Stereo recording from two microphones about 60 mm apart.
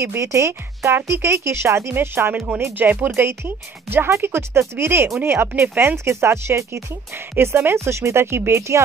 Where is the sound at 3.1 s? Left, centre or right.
Right.